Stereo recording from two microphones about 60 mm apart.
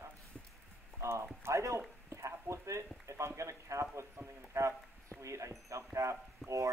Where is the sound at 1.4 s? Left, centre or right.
Right.